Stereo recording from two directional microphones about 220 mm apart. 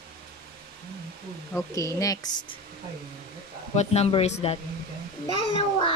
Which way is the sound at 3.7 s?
30° left (ahead or behind).